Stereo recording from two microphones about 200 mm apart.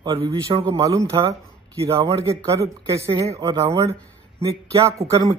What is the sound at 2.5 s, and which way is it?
A man's voice, 15° right (ahead or behind).